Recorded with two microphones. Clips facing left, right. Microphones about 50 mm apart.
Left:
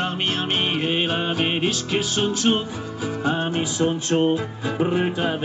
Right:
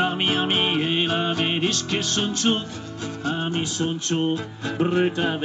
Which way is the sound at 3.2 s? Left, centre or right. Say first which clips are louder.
Left 3 dB; centre.